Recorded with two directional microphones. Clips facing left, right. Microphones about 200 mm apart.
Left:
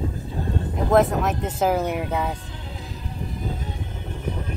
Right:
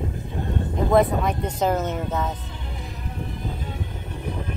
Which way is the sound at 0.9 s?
Centre (ahead or behind).